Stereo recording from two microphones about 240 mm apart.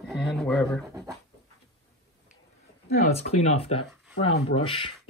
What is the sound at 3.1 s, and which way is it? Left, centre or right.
Speech, left.